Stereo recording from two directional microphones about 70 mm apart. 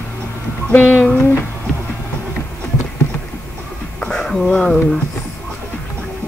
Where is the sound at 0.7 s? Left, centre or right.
Left.